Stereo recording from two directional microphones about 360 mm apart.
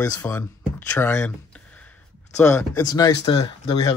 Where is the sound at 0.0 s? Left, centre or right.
Centre.